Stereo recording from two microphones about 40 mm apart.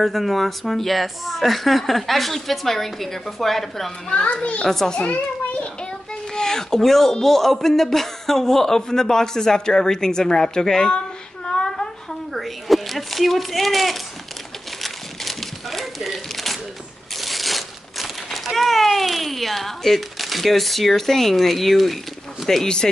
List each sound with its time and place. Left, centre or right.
0.0 s speech: centre
4.1 s a child's voice: left
4.6 s speech: centre
4.9 s a child's voice: left
6.3 s speech: centre
11.4 s a sound: centre
12.4 s speech: centre
14.8 s crumpling: centre
22.5 s speech: centre